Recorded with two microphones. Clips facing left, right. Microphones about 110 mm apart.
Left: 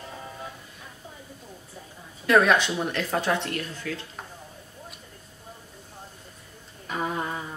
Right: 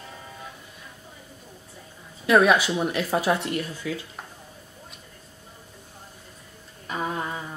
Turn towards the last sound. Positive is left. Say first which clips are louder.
# even
turn(degrees=0)  # may be behind; listen again after turning